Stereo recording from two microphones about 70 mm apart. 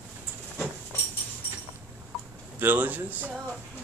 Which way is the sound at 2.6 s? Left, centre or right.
Right.